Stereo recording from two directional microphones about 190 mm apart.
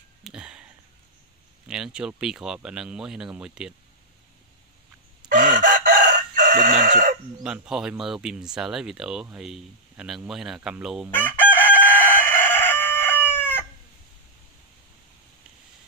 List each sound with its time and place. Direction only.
0.2 s a sound: 5° right (ahead or behind)
1.7 s speech: 5° right (ahead or behind)
5.3 s chicken: 45° right (ahead or behind)
7.4 s speech: 5° right (ahead or behind)
11.1 s chicken: 10° left (ahead or behind)